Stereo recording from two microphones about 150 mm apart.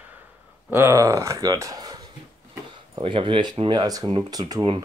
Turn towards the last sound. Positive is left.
turn(degrees=-30)  # may be behind; listen again after turning